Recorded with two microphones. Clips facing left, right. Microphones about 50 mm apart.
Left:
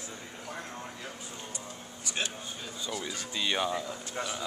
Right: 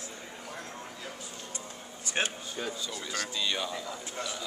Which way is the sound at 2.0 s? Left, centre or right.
Right.